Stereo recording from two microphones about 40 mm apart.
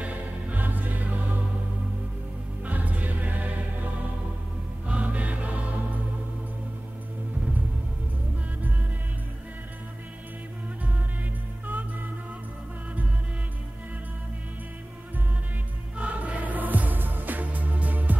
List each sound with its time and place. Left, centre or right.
0.0 s music: right
2.6 s music: right
4.8 s music: right
16.0 s music: right